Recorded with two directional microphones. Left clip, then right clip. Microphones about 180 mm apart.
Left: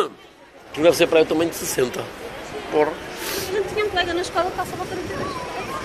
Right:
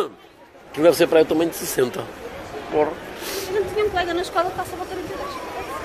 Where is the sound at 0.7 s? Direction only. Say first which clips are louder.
Even; 35° right (ahead or behind).